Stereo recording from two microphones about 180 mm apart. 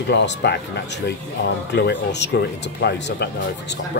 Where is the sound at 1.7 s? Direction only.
70° left (ahead or behind).